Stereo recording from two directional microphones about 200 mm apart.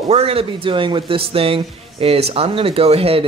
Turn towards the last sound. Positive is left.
turn(degrees=-30)  # may be behind; listen again after turning